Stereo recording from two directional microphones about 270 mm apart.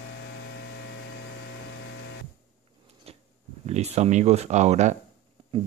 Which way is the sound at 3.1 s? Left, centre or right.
Right.